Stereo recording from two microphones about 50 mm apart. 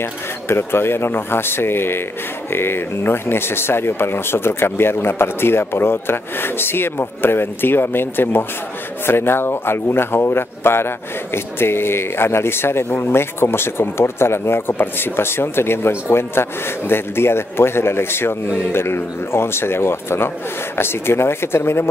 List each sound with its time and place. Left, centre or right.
0.0 s speech: left